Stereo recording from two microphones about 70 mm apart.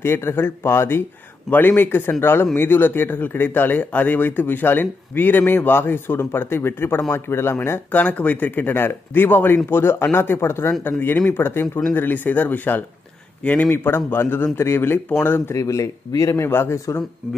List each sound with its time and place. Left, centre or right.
0.0 s speech: left
7.9 s speech: left
15.5 s speech: left